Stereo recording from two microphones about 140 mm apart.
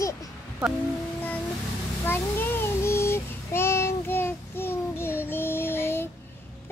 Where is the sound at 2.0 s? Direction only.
15° left (ahead or behind).